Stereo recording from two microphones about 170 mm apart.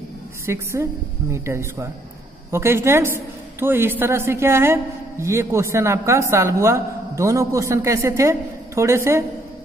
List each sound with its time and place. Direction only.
0.5 s a man's voice: 15° right (ahead or behind)